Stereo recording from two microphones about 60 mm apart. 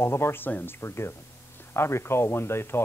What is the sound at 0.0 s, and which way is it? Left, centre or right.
Speech, left.